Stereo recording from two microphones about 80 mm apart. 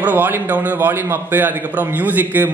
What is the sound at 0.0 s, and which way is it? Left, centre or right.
A man's voice, right.